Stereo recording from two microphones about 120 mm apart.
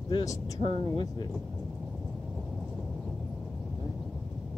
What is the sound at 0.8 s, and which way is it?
Speech, 40° left (ahead or behind).